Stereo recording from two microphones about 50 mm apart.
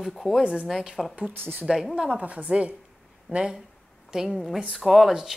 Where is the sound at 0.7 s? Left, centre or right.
Centre.